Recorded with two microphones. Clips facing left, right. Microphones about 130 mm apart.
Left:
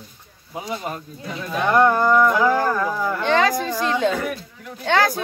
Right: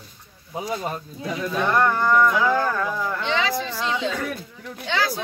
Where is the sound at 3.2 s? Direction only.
50° left (ahead or behind).